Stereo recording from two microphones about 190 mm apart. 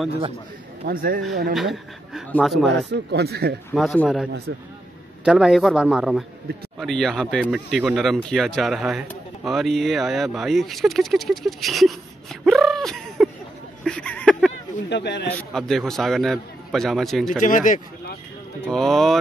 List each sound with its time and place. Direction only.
0.8 s speech: 50° right (ahead or behind)
1.5 s speech: centre (ahead or behind)
2.9 s speech: 60° right (ahead or behind)
3.7 s speech: 5° left (ahead or behind)
4.5 s speech: 70° right (ahead or behind)
5.2 s speech: 5° right (ahead or behind)
13.8 s a sound: 5° left (ahead or behind)
14.9 s a man's voice: 65° left (ahead or behind)
15.2 s speech: 5° left (ahead or behind)
17.4 s speech: 45° left (ahead or behind)
18.7 s speech: centre (ahead or behind)